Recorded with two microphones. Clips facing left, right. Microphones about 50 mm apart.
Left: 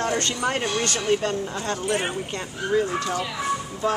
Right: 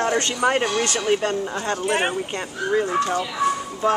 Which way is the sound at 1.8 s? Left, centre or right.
Right.